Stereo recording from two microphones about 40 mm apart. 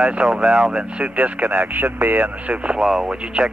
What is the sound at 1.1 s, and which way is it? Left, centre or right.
Speech, right.